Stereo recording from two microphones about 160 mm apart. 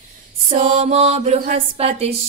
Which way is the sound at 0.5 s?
50° right (ahead or behind).